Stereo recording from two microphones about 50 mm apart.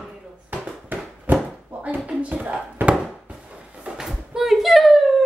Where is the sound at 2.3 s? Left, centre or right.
Right.